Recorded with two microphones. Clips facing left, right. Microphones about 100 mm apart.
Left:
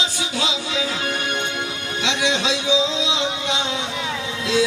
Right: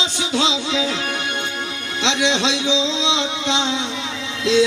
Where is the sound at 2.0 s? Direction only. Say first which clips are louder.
Right 3 dB; 25° right (ahead or behind).